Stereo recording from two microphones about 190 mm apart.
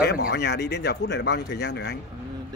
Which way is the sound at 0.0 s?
55° left (ahead or behind).